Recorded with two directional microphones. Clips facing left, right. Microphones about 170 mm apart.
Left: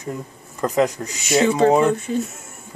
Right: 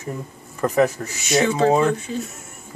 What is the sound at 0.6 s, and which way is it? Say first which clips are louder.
Speech: right 1 dB; 20° left (ahead or behind).